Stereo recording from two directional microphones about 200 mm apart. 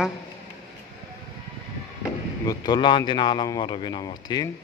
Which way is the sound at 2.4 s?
20° left (ahead or behind).